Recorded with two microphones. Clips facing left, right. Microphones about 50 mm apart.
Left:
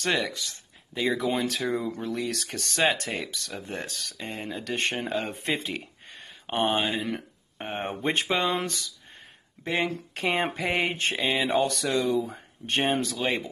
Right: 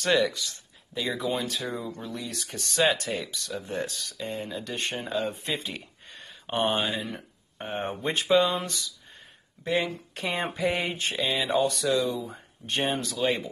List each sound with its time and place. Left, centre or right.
0.0 s speech: left
1.2 s speech: left
1.6 s speech: left
6.4 s speech: centre
9.7 s speech: left